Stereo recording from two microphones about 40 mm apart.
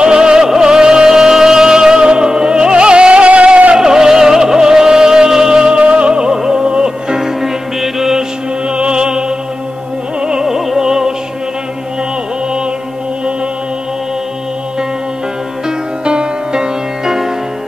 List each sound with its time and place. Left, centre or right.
0.0 s music: centre
3.7 s music: centre
5.6 s music: right; by 8.3 s centre
8.6 s music: right
10.2 s music: centre
16.0 s music: right